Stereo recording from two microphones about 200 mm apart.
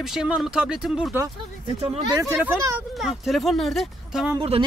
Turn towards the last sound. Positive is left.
turn(degrees=-25)  # may be behind; listen again after turning